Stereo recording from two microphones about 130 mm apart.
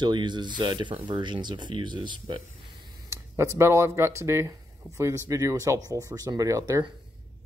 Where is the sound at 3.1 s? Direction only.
20° right (ahead or behind).